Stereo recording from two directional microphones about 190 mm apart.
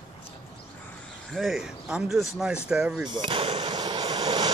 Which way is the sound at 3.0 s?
25° right (ahead or behind).